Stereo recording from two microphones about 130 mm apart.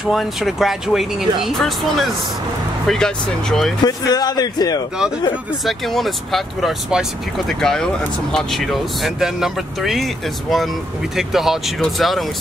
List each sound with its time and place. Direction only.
0.0 s speech: centre (ahead or behind)
3.8 s speech: 30° left (ahead or behind)
5.7 s speech: centre (ahead or behind)